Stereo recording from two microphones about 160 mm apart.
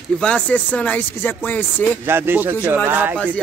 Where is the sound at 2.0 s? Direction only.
15° right (ahead or behind).